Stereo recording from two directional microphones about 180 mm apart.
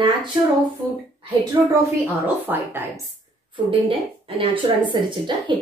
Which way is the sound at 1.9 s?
10° right (ahead or behind).